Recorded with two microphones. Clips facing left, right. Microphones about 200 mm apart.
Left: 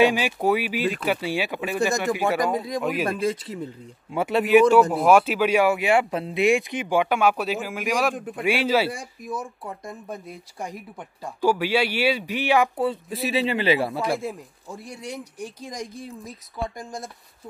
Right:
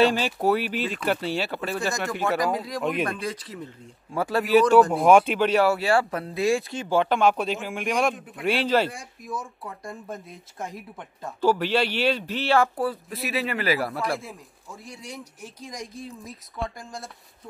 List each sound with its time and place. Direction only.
0.0 s speech: 15° left (ahead or behind)
2.3 s speech: centre (ahead or behind)
3.1 s speech: 25° left (ahead or behind)
4.5 s speech: 10° left (ahead or behind)
11.0 s speech: 10° left (ahead or behind)
13.9 s speech: centre (ahead or behind)